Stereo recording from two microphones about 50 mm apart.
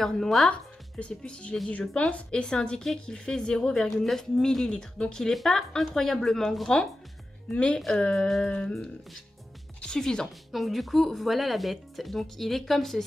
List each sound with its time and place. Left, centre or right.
0.0 s a woman's voice: centre
0.5 s a woman's voice: left; by 6.7 s centre
7.4 s a woman's voice: left
9.9 s a woman's voice: centre
10.5 s speech: centre